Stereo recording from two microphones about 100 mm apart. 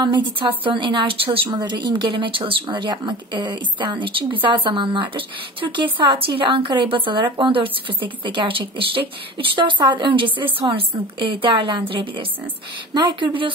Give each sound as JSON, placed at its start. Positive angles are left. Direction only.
{"t": 0.0, "sound": "a woman's voice", "side_deg": -50}
{"t": 1.5, "sound": "a woman's voice", "side_deg": -45}
{"t": 12.9, "sound": "a woman's voice", "side_deg": -50}